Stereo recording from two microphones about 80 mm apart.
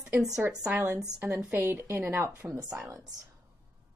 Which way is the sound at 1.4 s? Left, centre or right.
Right.